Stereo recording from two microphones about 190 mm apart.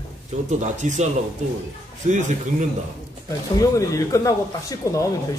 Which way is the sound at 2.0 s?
40° right (ahead or behind).